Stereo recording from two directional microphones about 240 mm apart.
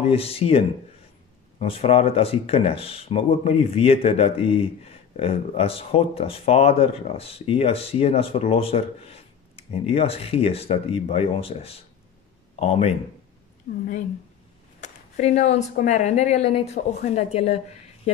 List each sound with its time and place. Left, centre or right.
0.1 s a woman's voice: left